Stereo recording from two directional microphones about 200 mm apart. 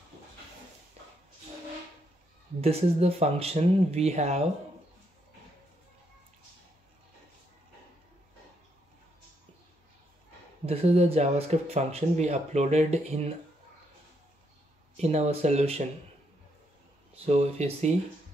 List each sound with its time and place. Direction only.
2.6 s speech: 30° right (ahead or behind)
10.6 s speech: 30° right (ahead or behind)
15.0 s speech: 35° right (ahead or behind)
17.1 s speech: 30° right (ahead or behind)